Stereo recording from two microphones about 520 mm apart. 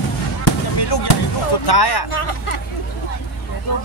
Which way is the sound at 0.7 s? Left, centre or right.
Left.